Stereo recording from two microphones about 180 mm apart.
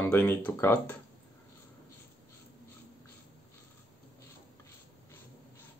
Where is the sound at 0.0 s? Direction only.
10° left (ahead or behind).